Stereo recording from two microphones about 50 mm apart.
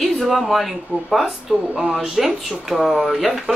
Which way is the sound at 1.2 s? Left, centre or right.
Centre.